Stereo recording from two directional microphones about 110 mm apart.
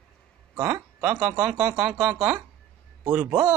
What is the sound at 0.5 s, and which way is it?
Speech, 20° right (ahead or behind).